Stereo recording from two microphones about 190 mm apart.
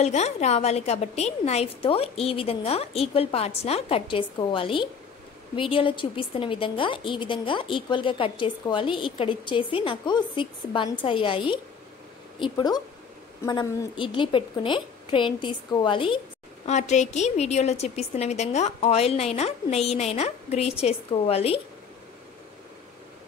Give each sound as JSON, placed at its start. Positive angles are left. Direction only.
{"t": 0.0, "sound": "a woman's voice", "side_deg": 35}
{"t": 16.6, "sound": "a woman's voice", "side_deg": 35}